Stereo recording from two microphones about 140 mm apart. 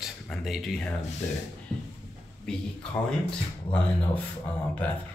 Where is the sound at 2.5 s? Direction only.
5° left (ahead or behind).